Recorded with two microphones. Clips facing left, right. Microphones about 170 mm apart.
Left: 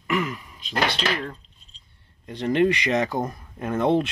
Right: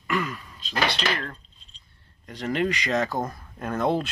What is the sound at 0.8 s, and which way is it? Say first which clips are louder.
Speech: left 1 dB; 10° left (ahead or behind).